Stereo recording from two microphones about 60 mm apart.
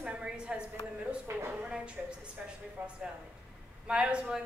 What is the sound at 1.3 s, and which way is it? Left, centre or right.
Speech, right.